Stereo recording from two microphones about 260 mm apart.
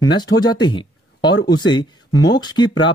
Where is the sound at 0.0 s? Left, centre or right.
Centre.